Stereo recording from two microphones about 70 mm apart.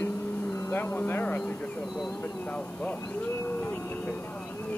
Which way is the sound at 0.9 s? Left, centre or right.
Left.